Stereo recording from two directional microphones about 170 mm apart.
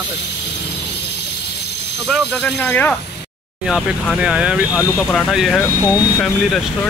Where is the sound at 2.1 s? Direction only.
5° left (ahead or behind).